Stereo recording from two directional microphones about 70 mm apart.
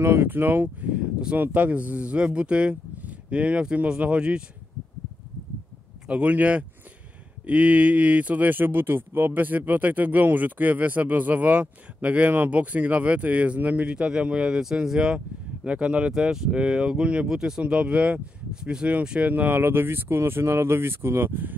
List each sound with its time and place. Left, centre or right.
0.0 s speech: right
0.9 s speech: centre
6.0 s speech: centre